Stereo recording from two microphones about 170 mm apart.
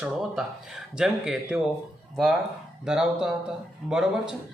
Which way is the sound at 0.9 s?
5° right (ahead or behind).